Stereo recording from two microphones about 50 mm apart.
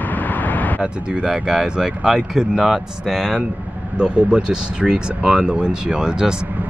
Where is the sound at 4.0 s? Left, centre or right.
Centre.